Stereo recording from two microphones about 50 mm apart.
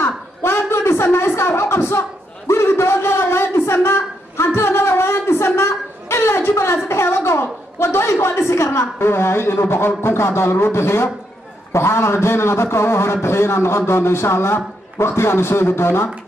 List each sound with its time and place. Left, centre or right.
0.0 s music: left
4.6 s a man's voice: left